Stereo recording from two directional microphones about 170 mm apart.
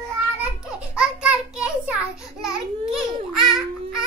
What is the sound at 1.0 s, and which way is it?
Child singing, 5° right (ahead or behind).